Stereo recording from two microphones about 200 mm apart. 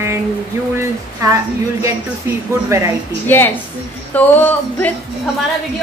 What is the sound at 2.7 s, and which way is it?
Speech, 15° right (ahead or behind).